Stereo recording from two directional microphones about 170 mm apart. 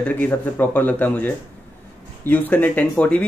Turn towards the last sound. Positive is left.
turn(degrees=5)  # may be behind; listen again after turning